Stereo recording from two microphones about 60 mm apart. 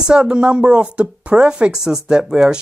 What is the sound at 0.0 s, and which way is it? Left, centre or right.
Speech, centre.